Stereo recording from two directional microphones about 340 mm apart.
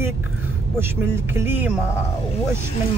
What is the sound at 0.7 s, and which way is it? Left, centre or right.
Speech, centre.